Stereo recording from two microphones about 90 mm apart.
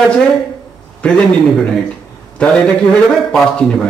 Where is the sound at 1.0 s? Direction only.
10° left (ahead or behind).